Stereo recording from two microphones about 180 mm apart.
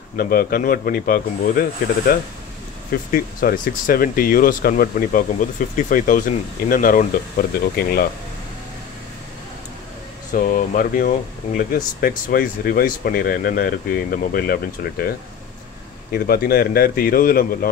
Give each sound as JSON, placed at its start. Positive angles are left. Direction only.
{"t": 0.2, "sound": "speech", "side_deg": 55}
{"t": 10.3, "sound": "speech", "side_deg": 50}
{"t": 16.1, "sound": "speech", "side_deg": 60}